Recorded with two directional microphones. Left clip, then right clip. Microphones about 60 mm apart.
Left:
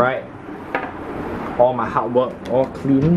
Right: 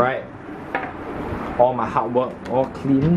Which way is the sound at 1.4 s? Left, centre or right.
Centre.